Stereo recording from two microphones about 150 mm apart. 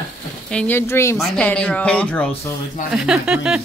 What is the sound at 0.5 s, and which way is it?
Speech, 10° left (ahead or behind).